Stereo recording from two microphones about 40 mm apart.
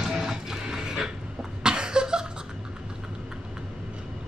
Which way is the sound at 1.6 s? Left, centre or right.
Right.